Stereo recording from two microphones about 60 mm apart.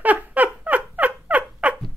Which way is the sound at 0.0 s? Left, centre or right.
Right.